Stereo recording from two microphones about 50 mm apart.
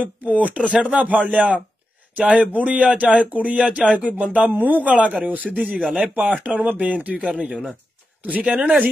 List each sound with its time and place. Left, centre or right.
0.0 s speech: right
5.8 s speech: centre
6.1 s speech: right
7.4 s speech: centre
8.2 s speech: right